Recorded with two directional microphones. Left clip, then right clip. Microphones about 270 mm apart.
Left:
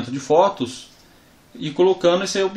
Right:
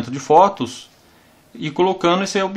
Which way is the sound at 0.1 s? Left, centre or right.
Right.